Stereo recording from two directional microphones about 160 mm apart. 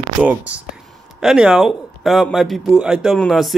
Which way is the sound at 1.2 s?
5° right (ahead or behind).